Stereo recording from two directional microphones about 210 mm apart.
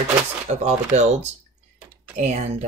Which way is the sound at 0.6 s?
35° right (ahead or behind).